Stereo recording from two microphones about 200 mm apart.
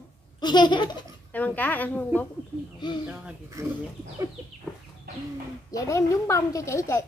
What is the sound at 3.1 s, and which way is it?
Speech, 10° right (ahead or behind).